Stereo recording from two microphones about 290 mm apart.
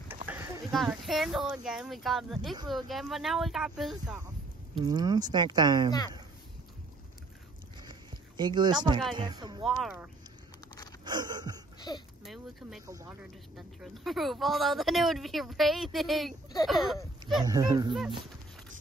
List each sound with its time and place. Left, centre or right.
0.1 s a sound: centre
1.6 s speech: centre
4.8 s speech: centre
7.8 s a sound: centre
9.1 s speech: centre
9.7 s speech: centre
11.1 s wheeze: centre
11.9 s speech: centre
12.2 s speech: centre
17.4 s speech: centre